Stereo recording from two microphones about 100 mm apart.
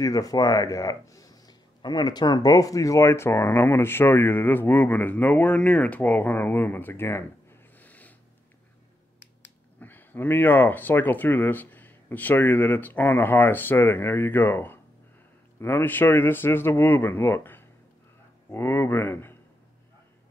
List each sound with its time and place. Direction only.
0.0 s speech: 35° left (ahead or behind)
7.8 s a sound: 15° left (ahead or behind)
9.8 s speech: 20° left (ahead or behind)